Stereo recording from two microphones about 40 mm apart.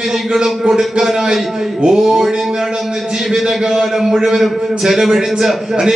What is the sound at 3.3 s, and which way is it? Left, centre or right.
A man's voice, centre.